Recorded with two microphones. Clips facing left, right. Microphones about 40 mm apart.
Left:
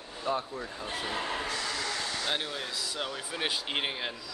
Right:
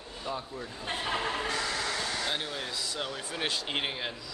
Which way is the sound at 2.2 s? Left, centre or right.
Centre.